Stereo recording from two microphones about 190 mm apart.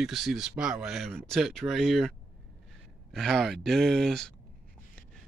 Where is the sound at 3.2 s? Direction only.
Centre (ahead or behind).